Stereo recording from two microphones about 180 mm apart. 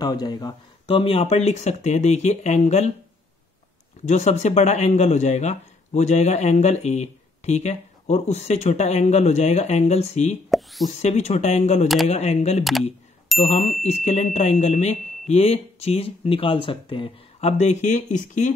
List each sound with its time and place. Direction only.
0.0 s speech: 20° left (ahead or behind); by 2.9 s 40° left (ahead or behind)
4.0 s speech: 40° left (ahead or behind)
10.5 s speech: centre (ahead or behind)
10.9 s speech: 40° left (ahead or behind)